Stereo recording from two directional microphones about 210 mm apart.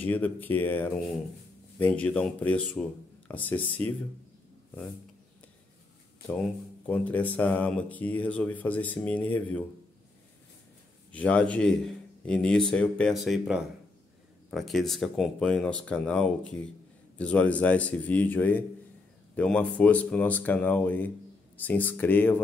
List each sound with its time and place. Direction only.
0.0 s speech: 10° left (ahead or behind)
6.9 s speech: 5° left (ahead or behind)
11.1 s a man's voice: 5° left (ahead or behind)